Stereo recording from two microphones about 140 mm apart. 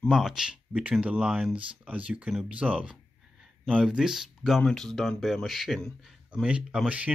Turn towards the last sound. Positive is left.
turn(degrees=-5)  # may be behind; listen again after turning